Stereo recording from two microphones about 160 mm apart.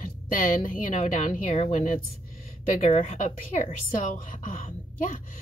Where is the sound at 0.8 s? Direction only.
45° left (ahead or behind).